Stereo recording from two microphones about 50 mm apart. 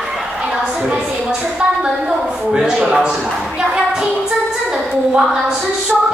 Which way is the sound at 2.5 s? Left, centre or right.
Centre.